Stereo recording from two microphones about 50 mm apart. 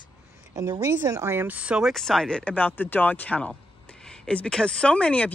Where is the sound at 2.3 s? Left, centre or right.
Centre.